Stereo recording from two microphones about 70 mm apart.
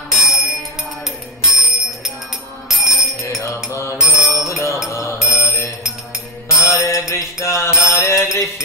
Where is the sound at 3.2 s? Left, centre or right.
Left.